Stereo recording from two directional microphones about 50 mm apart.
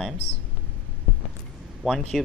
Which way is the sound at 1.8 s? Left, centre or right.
Centre.